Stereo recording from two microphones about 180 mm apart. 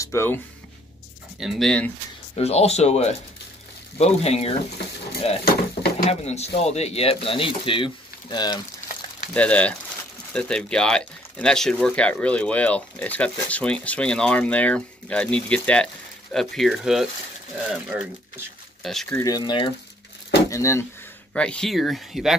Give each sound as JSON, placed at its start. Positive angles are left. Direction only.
{"t": 0.0, "sound": "speech", "side_deg": 15}
{"t": 1.4, "sound": "speech", "side_deg": 0}
{"t": 2.3, "sound": "speech", "side_deg": 35}
{"t": 9.3, "sound": "speech", "side_deg": 5}
{"t": 19.1, "sound": "speech", "side_deg": 20}
{"t": 21.3, "sound": "speech", "side_deg": 5}